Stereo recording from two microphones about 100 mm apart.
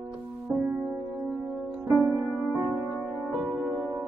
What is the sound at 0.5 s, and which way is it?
Music, 10° right (ahead or behind).